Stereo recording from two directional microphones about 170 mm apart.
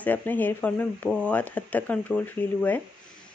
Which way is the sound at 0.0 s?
10° left (ahead or behind).